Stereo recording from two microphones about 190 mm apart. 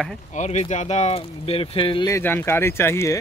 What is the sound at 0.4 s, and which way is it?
Speech, 35° left (ahead or behind).